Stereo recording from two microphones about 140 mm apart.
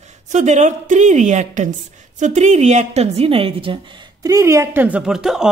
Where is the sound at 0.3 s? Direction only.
60° right (ahead or behind); by 3.8 s 40° right (ahead or behind).